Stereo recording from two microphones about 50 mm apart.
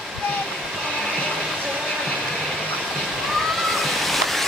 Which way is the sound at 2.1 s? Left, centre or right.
Centre.